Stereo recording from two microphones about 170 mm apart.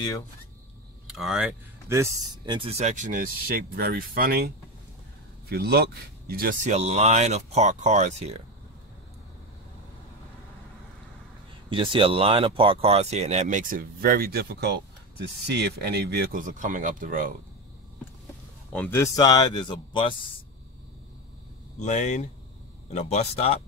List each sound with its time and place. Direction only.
1.0 s speech: 5° right (ahead or behind)
1.9 s speech: 15° right (ahead or behind)
2.8 s speech: 45° right (ahead or behind); by 4.5 s 65° right (ahead or behind)
5.5 s speech: 70° right (ahead or behind)
6.7 s speech: 40° right (ahead or behind)
11.7 s speech: 30° right (ahead or behind); by 16.3 s 75° right (ahead or behind)
16.3 s speech: 50° right (ahead or behind)
18.7 s speech: 10° left (ahead or behind)
19.1 s speech: 25° left (ahead or behind)
21.7 s speech: 45° left (ahead or behind)